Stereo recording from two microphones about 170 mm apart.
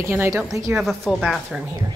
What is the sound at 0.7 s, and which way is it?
Speech, centre (ahead or behind).